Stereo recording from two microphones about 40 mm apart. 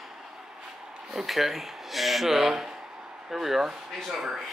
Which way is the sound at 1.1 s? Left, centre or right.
Centre.